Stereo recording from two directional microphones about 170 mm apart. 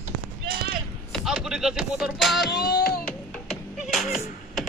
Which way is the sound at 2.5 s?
65° left (ahead or behind).